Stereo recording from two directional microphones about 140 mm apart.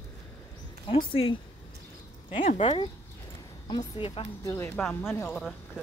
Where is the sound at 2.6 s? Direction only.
35° left (ahead or behind).